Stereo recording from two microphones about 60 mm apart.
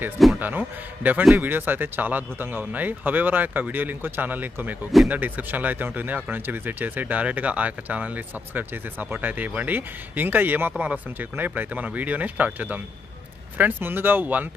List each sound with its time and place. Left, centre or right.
0.4 s speech: right